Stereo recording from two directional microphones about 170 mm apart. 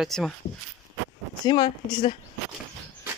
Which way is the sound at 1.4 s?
25° left (ahead or behind).